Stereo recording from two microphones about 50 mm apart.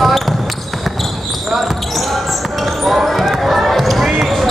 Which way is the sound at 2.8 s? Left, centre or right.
Centre.